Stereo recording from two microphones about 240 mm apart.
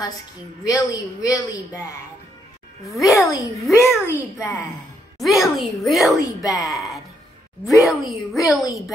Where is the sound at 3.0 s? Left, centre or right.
Centre.